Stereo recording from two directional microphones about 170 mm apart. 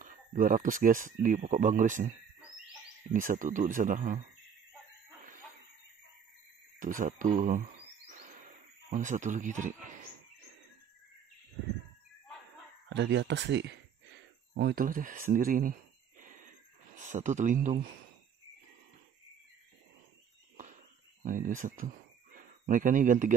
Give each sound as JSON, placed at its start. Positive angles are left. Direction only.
{"t": 0.0, "sound": "speech", "side_deg": -50}
{"t": 3.1, "sound": "speech", "side_deg": -50}
{"t": 6.8, "sound": "speech", "side_deg": -50}
{"t": 8.9, "sound": "speech", "side_deg": -45}
{"t": 12.9, "sound": "speech", "side_deg": -90}
{"t": 14.5, "sound": "speech", "side_deg": -65}
{"t": 16.2, "sound": "wheeze", "side_deg": -50}
{"t": 16.9, "sound": "speech", "side_deg": -45}
{"t": 21.2, "sound": "speech", "side_deg": -50}